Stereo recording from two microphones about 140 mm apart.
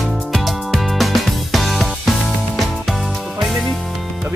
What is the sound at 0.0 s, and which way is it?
Music, centre (ahead or behind).